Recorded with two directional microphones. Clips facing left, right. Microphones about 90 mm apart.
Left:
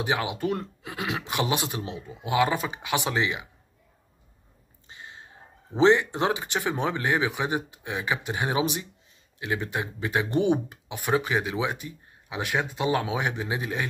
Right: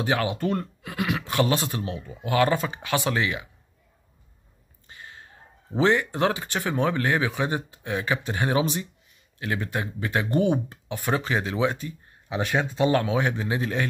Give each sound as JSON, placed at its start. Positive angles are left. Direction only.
{"t": 0.0, "sound": "speech", "side_deg": 15}
{"t": 4.8, "sound": "a sound", "side_deg": 20}
{"t": 5.8, "sound": "speech", "side_deg": 20}